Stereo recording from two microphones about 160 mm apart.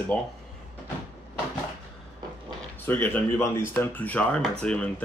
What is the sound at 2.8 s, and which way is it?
Speech, 10° left (ahead or behind).